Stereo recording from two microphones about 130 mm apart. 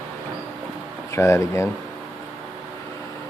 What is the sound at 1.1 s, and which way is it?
Speech, 20° left (ahead or behind).